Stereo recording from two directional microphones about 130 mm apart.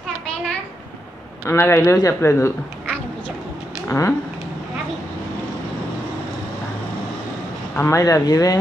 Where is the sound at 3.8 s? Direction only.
25° left (ahead or behind).